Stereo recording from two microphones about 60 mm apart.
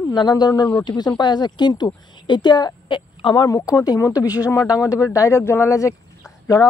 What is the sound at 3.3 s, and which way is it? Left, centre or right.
Speech, left.